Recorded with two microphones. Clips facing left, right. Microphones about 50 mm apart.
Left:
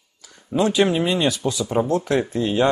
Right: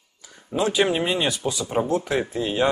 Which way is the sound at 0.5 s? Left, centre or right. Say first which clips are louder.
Left 3 dB; centre.